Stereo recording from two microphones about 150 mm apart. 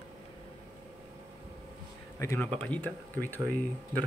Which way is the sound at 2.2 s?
20° left (ahead or behind).